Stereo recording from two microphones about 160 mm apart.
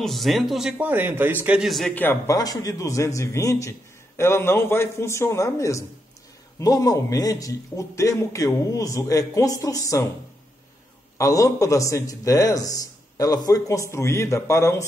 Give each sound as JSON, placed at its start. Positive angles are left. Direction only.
{"t": 0.0, "sound": "a man's voice", "side_deg": 0}
{"t": 2.0, "sound": "a man's voice", "side_deg": 15}
{"t": 11.1, "sound": "a man's voice", "side_deg": 20}